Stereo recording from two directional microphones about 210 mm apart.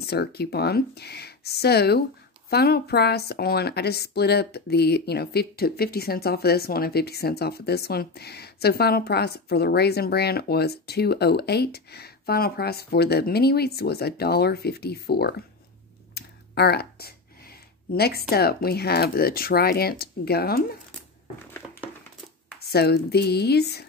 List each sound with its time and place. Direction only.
0.0 s a woman's voice: 50° left (ahead or behind)
16.2 s a sound: 50° left (ahead or behind)
18.3 s a woman's voice: 45° left (ahead or behind)
22.6 s a woman's voice: 50° left (ahead or behind)